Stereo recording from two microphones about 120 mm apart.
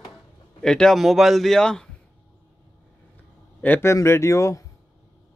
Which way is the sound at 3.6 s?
15° left (ahead or behind).